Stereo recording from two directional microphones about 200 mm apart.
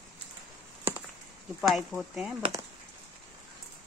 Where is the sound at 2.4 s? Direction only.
15° right (ahead or behind).